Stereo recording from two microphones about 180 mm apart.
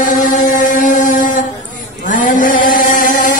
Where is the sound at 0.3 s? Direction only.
45° left (ahead or behind).